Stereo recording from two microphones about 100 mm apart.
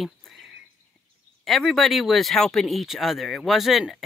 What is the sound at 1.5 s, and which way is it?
Speech, centre (ahead or behind).